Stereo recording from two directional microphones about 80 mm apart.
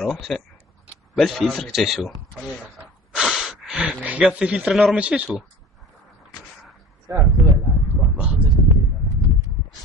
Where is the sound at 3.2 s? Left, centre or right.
Centre.